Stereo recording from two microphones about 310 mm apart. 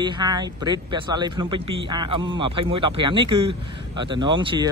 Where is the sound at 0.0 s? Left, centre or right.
Centre.